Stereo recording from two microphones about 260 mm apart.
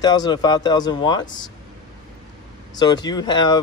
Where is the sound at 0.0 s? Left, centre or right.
Centre.